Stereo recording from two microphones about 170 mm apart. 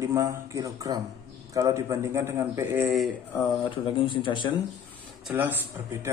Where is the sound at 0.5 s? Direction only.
20° right (ahead or behind).